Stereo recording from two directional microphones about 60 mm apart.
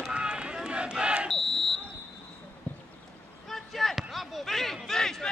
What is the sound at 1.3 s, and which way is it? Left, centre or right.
Smoke detector, centre.